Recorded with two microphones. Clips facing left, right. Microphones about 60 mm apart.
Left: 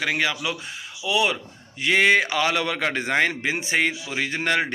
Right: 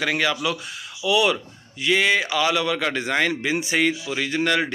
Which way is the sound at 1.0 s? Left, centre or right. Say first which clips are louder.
Right 3 dB; left.